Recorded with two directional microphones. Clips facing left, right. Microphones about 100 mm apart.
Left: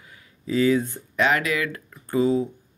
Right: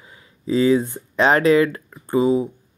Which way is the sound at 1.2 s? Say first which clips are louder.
Right 8 dB; 35° right (ahead or behind).